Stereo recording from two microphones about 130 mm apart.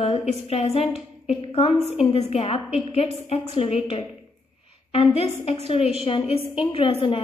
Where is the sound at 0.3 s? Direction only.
55° left (ahead or behind).